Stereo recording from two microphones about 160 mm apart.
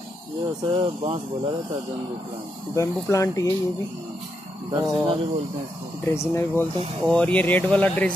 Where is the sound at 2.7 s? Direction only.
20° left (ahead or behind).